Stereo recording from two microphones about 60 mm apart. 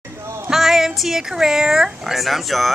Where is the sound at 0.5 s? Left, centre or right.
Centre.